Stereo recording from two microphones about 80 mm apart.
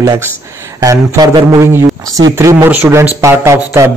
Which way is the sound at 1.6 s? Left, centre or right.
Right.